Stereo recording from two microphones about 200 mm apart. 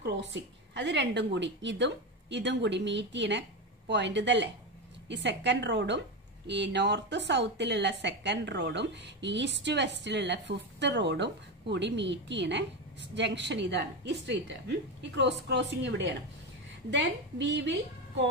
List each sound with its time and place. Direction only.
0.0 s a woman's voice: 65° right (ahead or behind)